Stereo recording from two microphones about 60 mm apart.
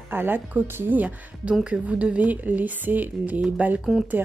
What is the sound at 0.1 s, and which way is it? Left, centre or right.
A woman's voice, right.